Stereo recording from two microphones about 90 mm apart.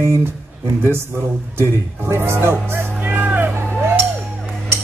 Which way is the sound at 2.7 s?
20° right (ahead or behind).